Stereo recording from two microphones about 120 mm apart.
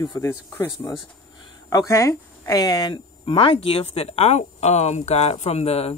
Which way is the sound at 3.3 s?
50° left (ahead or behind).